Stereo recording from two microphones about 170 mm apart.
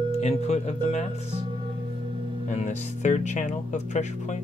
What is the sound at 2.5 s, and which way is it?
Speech, 40° left (ahead or behind).